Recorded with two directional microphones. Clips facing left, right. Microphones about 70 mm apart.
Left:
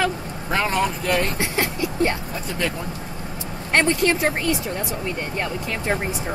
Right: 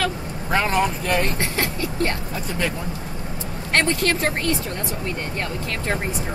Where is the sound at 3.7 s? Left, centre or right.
Centre.